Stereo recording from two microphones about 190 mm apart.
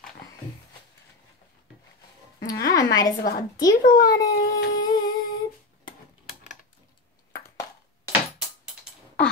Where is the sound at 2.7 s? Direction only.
20° left (ahead or behind).